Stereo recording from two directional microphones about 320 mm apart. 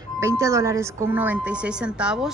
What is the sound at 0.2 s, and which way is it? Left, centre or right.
A woman's voice, centre.